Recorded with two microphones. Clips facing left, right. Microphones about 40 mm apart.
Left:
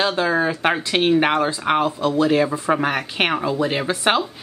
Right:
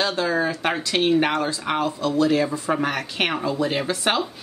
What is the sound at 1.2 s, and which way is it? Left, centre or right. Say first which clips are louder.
A woman's voice: left 4 dB; left.